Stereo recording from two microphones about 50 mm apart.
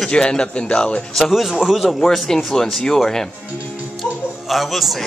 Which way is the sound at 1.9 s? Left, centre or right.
Centre.